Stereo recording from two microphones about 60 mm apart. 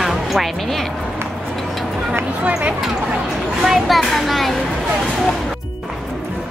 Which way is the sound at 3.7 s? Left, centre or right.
Centre.